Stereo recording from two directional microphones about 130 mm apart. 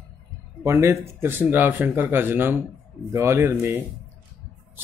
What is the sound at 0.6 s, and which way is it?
Speech, 20° right (ahead or behind).